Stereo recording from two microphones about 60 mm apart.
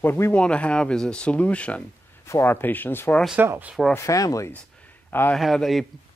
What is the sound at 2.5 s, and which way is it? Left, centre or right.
Speech, left.